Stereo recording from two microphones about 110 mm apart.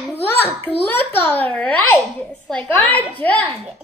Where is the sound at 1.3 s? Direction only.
15° left (ahead or behind).